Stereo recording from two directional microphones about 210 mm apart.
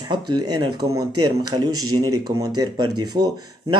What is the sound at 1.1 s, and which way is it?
Speech, 90° right.